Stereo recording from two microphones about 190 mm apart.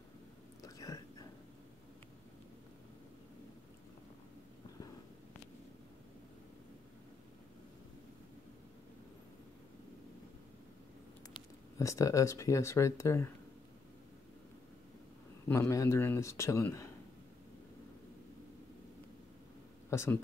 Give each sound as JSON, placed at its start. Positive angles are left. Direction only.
{"t": 0.6, "sound": "whispering", "side_deg": 20}
{"t": 11.3, "sound": "speech", "side_deg": 15}
{"t": 15.4, "sound": "speech", "side_deg": 10}
{"t": 19.9, "sound": "speech", "side_deg": 15}